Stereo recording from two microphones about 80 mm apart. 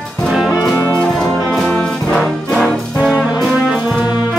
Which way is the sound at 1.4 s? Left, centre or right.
Centre.